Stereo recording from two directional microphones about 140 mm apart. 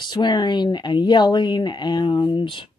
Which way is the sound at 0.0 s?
30° left (ahead or behind).